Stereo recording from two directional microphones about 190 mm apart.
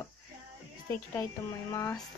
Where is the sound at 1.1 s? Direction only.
15° left (ahead or behind).